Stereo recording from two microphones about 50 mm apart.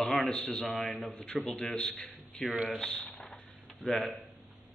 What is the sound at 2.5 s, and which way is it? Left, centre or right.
Speech, right.